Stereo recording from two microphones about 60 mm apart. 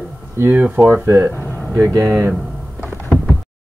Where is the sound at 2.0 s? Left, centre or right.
Right.